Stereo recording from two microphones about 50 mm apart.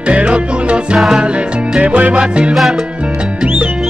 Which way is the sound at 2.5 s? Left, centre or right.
Centre.